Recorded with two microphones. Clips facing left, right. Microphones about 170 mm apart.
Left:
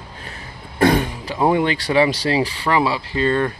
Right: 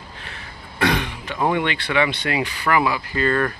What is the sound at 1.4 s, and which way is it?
Speech, 30° left (ahead or behind).